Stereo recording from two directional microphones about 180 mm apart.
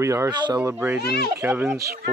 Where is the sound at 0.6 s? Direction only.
10° right (ahead or behind).